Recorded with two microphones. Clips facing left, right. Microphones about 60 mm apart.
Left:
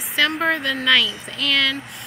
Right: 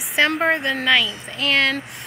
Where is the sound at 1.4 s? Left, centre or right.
Right.